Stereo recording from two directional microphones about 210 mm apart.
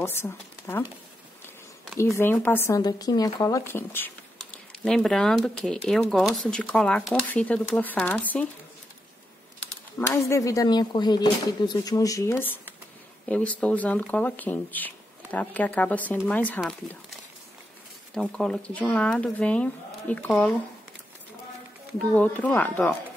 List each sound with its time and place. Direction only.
0.0 s speech: 10° left (ahead or behind)
2.0 s speech: 15° left (ahead or behind)
9.9 s speech: 10° left (ahead or behind)
21.9 s speech: 5° left (ahead or behind)